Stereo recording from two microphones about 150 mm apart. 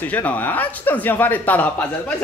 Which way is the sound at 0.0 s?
10° left (ahead or behind).